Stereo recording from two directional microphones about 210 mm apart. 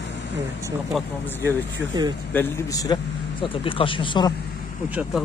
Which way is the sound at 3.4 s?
25° left (ahead or behind).